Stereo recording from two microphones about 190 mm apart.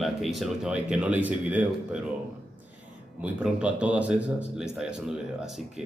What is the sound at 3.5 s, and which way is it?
Speech, 5° right (ahead or behind).